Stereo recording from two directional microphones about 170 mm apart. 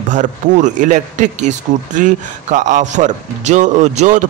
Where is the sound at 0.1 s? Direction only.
45° right (ahead or behind).